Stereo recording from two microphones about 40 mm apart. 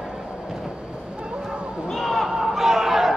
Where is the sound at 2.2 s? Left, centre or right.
Centre.